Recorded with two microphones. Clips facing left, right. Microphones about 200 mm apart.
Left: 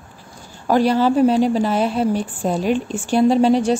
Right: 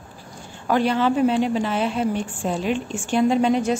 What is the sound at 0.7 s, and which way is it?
A woman's voice, 35° left (ahead or behind).